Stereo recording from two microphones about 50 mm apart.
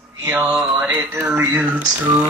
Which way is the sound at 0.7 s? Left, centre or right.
Right.